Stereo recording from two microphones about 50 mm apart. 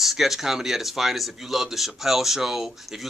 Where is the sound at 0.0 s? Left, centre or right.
Centre.